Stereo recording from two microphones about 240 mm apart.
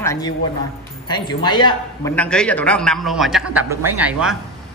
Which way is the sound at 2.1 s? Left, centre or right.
Centre.